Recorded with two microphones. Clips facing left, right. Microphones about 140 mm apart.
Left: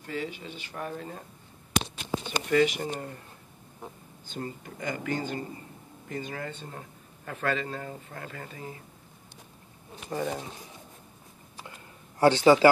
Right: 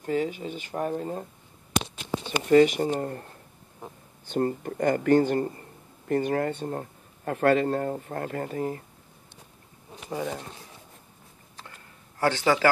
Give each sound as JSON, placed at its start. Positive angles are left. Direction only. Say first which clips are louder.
{"t": 0.0, "sound": "speech", "louder": "right 8 dB", "side_deg": -45}
{"t": 2.2, "sound": "speech", "louder": "right 6 dB", "side_deg": -35}
{"t": 4.3, "sound": "a man's voice", "louder": "right 11 dB", "side_deg": -55}
{"t": 10.0, "sound": "speech", "louder": "even", "side_deg": -5}
{"t": 11.5, "sound": "a sound", "louder": "left 2 dB", "side_deg": 15}